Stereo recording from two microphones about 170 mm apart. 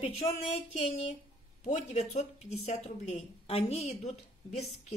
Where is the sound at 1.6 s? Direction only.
45° left (ahead or behind).